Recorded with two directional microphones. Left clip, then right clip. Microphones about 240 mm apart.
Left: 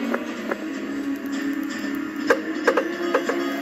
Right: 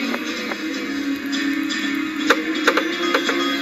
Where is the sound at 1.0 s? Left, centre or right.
Right.